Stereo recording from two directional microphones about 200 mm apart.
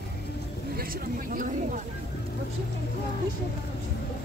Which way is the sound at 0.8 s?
45° right (ahead or behind).